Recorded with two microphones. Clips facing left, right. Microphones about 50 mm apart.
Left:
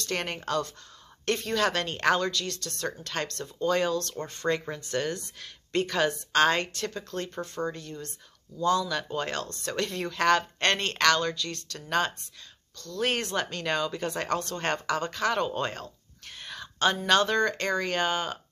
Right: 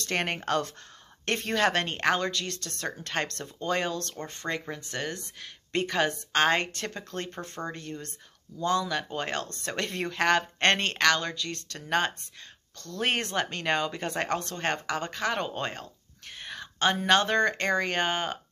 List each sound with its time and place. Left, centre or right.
0.1 s speech: right
1.5 s speech: right; by 4.7 s centre
4.7 s speech: centre
10.9 s speech: centre
12.7 s speech: right
13.0 s speech: right
14.5 s speech: centre; by 18.4 s right